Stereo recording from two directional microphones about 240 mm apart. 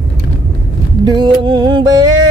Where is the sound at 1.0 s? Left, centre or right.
Centre.